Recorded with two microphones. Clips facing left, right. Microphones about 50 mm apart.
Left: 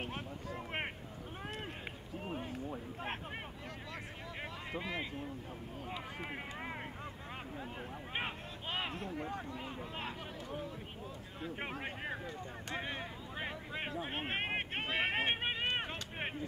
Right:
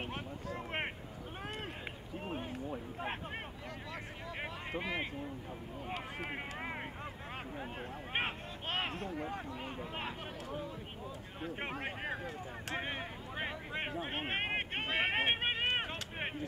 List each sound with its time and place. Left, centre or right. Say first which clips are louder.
2.7 s a sound: right 2 dB; centre
8.9 s speech: right 1 dB; centre
11.8 s speech: right 2 dB; centre